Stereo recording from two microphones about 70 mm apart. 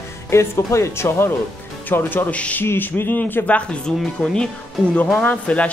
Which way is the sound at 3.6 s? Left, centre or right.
Centre.